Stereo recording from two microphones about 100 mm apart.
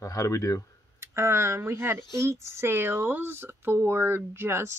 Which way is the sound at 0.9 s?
25° right (ahead or behind).